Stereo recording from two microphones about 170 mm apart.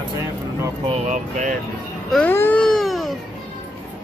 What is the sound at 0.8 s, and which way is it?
Speech, 40° right (ahead or behind).